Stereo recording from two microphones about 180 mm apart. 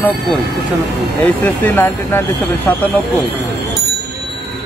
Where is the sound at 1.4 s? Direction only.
10° left (ahead or behind).